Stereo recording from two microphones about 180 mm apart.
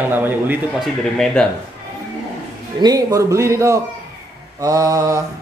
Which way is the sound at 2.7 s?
20° right (ahead or behind).